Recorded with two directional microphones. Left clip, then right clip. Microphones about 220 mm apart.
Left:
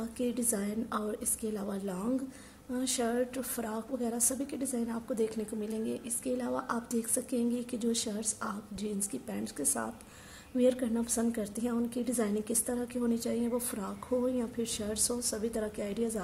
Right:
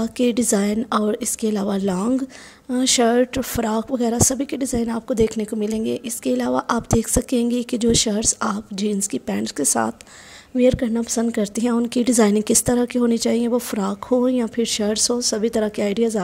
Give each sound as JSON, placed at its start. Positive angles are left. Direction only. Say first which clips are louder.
{"t": 0.0, "sound": "a woman's voice", "louder": "right 14 dB", "side_deg": -40}